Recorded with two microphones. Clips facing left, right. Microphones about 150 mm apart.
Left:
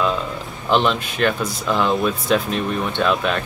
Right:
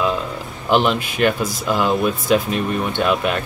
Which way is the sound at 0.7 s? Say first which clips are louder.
Right 1 dB; 10° right (ahead or behind).